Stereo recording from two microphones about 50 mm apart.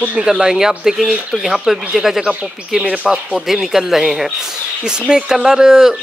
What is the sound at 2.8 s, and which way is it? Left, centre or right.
Speech, right.